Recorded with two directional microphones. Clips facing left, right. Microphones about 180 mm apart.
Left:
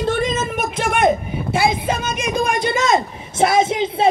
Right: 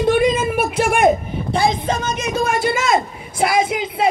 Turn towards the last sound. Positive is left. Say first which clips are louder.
# left 2 dB
turn(degrees=25)  # may be behind; listen again after turning